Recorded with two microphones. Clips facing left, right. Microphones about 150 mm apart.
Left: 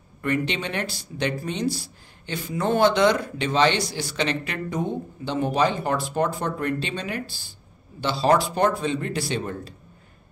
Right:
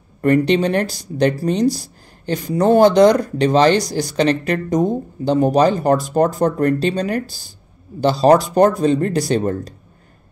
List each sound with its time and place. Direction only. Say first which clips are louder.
0.2 s speech: right 11 dB; 40° right (ahead or behind)